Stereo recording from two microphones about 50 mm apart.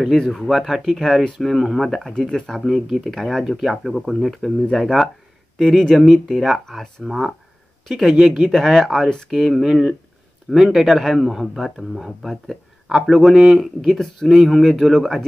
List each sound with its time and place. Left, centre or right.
0.2 s speech: centre
3.4 s speech: centre